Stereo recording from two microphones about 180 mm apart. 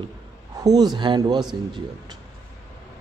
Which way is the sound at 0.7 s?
20° right (ahead or behind).